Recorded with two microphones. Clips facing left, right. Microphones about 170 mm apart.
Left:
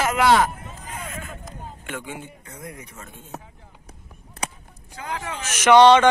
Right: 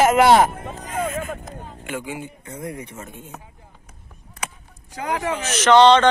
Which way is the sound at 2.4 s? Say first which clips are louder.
Right 7 dB; 25° right (ahead or behind).